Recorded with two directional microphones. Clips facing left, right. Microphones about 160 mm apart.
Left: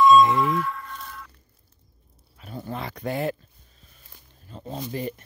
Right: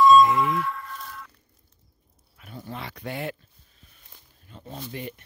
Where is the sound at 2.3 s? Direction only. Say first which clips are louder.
Left 5 dB; 30° left (ahead or behind).